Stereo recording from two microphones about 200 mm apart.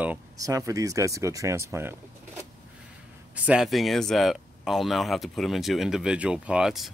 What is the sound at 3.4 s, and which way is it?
Speech, centre (ahead or behind).